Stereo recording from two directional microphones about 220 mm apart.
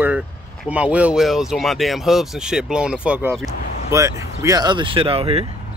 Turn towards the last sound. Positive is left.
turn(degrees=-25)  # may be behind; listen again after turning